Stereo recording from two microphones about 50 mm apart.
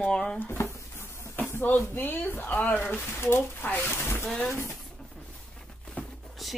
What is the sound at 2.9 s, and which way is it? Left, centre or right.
Speech, left.